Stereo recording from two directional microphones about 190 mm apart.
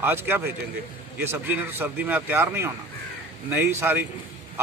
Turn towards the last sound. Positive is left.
turn(degrees=-10)  # may be behind; listen again after turning